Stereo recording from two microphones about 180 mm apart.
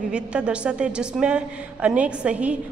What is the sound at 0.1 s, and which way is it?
A woman's voice, 5° right (ahead or behind).